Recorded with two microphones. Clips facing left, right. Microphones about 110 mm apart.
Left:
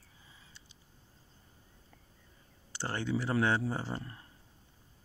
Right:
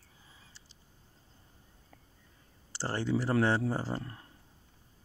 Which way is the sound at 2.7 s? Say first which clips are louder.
Right 3 dB; 35° right (ahead or behind).